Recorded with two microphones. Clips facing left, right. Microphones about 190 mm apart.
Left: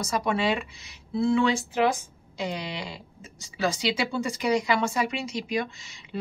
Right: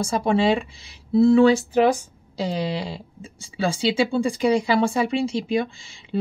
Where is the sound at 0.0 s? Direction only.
30° right (ahead or behind).